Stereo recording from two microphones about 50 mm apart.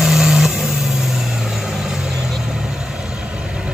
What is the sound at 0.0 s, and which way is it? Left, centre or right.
Vehicle, centre.